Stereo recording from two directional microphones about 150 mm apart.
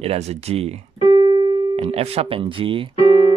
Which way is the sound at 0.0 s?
45° right (ahead or behind).